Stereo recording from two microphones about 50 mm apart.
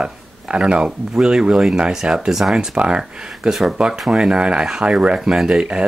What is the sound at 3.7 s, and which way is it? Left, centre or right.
Speech, centre.